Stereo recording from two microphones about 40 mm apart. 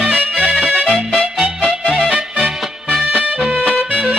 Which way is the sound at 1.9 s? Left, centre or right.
Centre.